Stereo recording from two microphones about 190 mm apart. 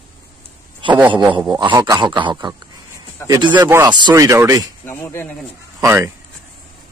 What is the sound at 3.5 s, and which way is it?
Speech, 15° right (ahead or behind).